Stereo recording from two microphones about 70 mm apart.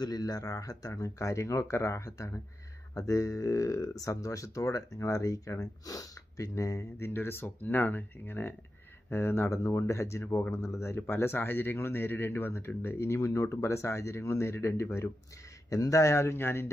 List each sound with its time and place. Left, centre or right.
0.0 s speech: left
15.7 s speech: left